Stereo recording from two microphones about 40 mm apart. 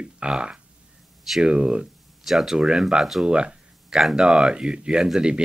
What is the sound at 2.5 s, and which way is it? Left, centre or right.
Speech, centre.